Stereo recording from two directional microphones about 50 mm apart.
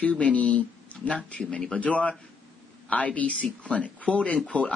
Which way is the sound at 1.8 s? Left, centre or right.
Left.